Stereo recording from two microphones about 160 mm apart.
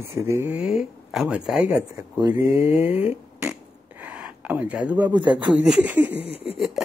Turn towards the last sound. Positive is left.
turn(degrees=-5)  # may be behind; listen again after turning